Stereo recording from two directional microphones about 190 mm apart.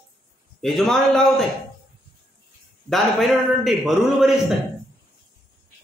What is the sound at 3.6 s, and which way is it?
Speech, centre (ahead or behind).